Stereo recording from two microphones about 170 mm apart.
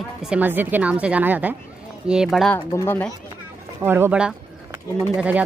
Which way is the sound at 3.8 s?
15° right (ahead or behind).